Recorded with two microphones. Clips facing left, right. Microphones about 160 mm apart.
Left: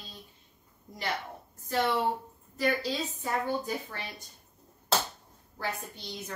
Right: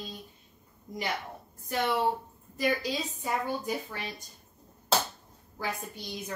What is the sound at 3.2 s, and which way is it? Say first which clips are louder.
Speech: left 2 dB; 10° right (ahead or behind).